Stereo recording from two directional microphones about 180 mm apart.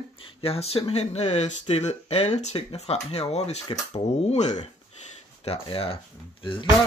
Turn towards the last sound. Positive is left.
turn(degrees=25)  # may be behind; listen again after turning